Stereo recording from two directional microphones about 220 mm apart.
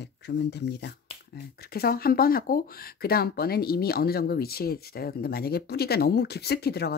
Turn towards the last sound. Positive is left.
turn(degrees=45)  # may be behind; listen again after turning